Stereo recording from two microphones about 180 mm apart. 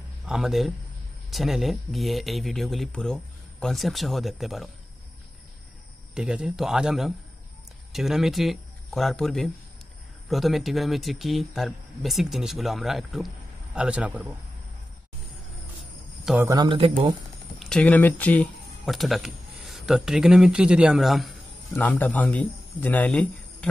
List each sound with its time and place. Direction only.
0.3 s speech: centre (ahead or behind)
6.1 s a man's voice: 5° right (ahead or behind)
16.4 s a man's voice: 25° right (ahead or behind)
17.6 s a man's voice: 5° left (ahead or behind)